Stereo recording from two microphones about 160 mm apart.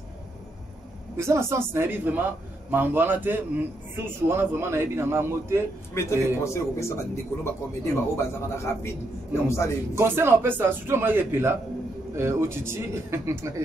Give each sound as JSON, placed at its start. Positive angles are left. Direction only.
{"t": 1.1, "sound": "a man's voice", "side_deg": -20}
{"t": 5.9, "sound": "a man's voice", "side_deg": 15}
{"t": 9.9, "sound": "a man's voice", "side_deg": -15}